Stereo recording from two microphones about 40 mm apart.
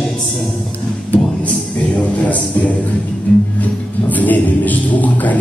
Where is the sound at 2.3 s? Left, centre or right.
Left.